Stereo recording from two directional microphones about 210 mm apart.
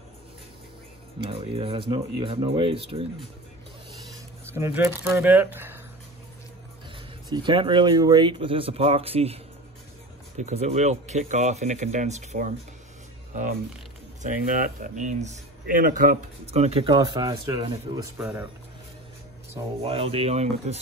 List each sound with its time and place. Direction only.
1.2 s speech: 25° right (ahead or behind)
4.5 s speech: 10° right (ahead or behind)
7.2 s speech: 20° right (ahead or behind)
14.2 s speech: 40° right (ahead or behind); by 18.5 s 10° right (ahead or behind)
19.8 s speech: 25° right (ahead or behind)